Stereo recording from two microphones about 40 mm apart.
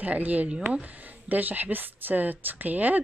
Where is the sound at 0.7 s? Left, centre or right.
Right.